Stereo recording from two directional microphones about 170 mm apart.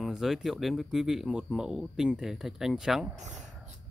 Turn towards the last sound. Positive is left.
turn(degrees=-45)  # may be behind; listen again after turning